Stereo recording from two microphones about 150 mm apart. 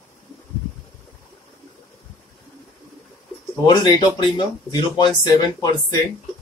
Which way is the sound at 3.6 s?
30° left (ahead or behind).